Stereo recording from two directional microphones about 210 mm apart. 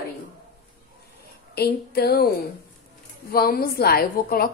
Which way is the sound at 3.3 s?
45° left (ahead or behind).